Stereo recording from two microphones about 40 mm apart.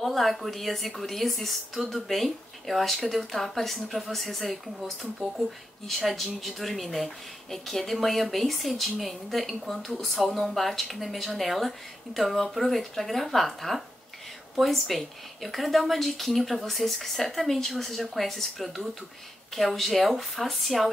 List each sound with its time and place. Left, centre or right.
0.0 s a woman's voice: centre